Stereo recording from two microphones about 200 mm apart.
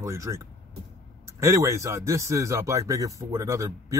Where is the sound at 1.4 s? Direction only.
15° right (ahead or behind).